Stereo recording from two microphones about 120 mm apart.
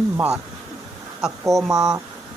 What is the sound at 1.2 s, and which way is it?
Speech, 5° right (ahead or behind).